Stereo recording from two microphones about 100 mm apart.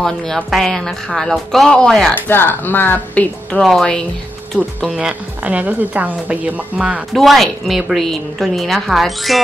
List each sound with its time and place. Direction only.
0.0 s a woman's voice: 5° left (ahead or behind)
2.2 s speech: 20° left (ahead or behind)
3.6 s a woman's voice: 5° left (ahead or behind)
4.9 s a woman's voice: 10° right (ahead or behind)
7.1 s a woman's voice: centre (ahead or behind)